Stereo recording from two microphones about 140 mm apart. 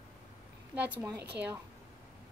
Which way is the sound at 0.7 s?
10° right (ahead or behind).